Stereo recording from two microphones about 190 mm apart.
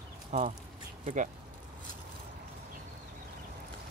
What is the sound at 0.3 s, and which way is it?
Speech, 40° right (ahead or behind).